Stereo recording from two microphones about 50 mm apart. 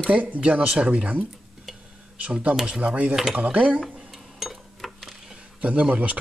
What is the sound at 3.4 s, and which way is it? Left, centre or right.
Speech, right.